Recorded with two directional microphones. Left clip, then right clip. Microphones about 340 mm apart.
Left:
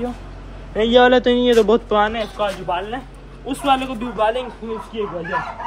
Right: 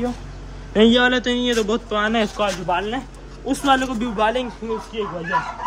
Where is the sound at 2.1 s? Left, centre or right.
Right.